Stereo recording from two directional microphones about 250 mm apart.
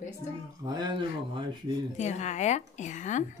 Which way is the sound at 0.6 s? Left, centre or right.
Centre.